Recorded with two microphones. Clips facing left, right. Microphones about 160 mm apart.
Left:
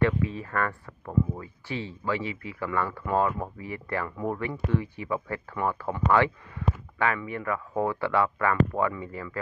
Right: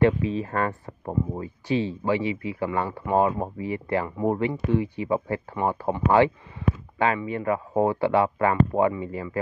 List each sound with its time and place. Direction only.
0.0 s speech: 20° right (ahead or behind)
1.0 s speech: 35° right (ahead or behind)
1.7 s speech: 20° right (ahead or behind)